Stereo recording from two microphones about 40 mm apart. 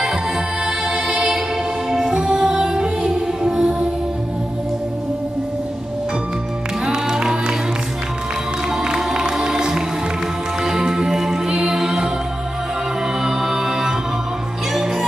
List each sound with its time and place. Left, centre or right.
0.7 s music: centre
6.9 s music: centre
8.8 s music: centre
13.2 s music: centre